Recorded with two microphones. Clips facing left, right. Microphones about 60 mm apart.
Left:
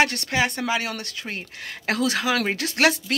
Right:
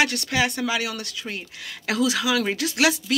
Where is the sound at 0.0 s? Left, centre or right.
Left.